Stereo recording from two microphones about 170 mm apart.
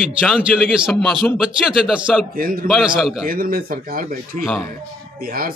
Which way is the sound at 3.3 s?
60° right (ahead or behind).